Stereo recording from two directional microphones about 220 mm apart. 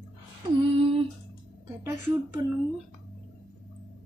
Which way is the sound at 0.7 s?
25° right (ahead or behind).